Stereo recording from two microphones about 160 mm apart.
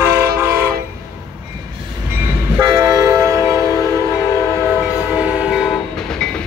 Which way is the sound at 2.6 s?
25° right (ahead or behind).